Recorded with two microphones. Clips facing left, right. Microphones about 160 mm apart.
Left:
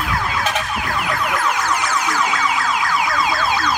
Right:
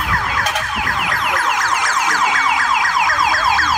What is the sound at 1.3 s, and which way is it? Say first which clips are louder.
Car alarm: right 2 dB; 90° right.